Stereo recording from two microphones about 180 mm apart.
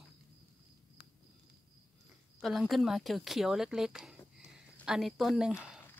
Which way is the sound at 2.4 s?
Centre (ahead or behind).